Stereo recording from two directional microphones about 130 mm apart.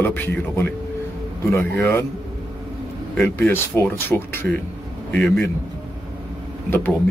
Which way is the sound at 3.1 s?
15° left (ahead or behind).